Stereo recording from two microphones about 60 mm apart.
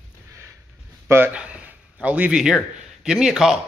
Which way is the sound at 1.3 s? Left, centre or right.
Right.